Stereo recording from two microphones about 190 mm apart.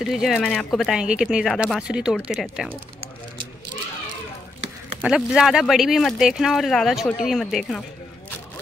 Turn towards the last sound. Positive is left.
turn(degrees=0)  # may be behind; listen again after turning